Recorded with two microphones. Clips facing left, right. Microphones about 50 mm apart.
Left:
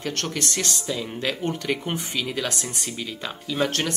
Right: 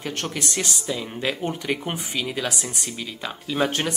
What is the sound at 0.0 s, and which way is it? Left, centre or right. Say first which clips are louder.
Speech: left 1 dB; centre.